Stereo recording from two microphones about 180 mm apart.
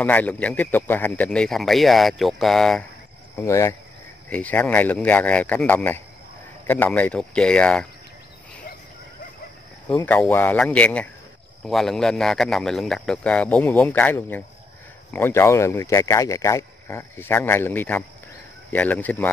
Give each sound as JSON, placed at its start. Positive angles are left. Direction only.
{"t": 0.0, "sound": "a man's voice", "side_deg": 10}
{"t": 3.3, "sound": "a man's voice", "side_deg": 15}
{"t": 10.0, "sound": "a man's voice", "side_deg": 10}